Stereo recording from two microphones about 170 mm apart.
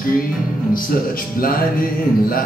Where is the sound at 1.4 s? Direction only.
60° left (ahead or behind).